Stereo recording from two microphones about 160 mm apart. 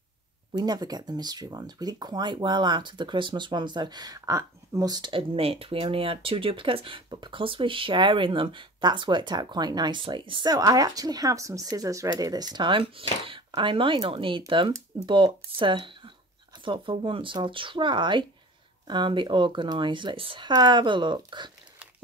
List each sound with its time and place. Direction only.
0.6 s speech: 25° right (ahead or behind)